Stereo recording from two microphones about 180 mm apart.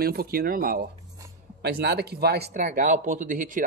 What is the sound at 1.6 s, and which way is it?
Speech, 65° right (ahead or behind).